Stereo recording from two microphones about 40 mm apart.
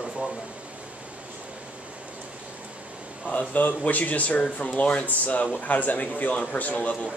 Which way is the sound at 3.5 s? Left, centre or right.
Left.